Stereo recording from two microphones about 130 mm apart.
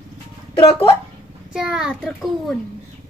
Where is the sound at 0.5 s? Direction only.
45° left (ahead or behind).